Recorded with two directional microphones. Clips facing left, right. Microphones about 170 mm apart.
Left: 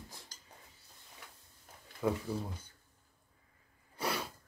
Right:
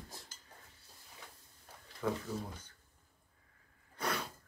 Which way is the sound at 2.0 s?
10° left (ahead or behind).